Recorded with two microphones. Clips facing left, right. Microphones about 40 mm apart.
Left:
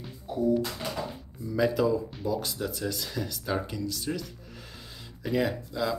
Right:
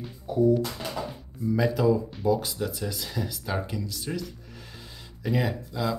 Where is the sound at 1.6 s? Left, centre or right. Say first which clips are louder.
Right 1 dB; centre.